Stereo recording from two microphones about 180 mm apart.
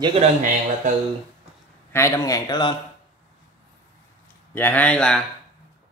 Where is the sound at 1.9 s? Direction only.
15° left (ahead or behind).